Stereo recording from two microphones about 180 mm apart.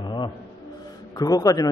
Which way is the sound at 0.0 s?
25° left (ahead or behind).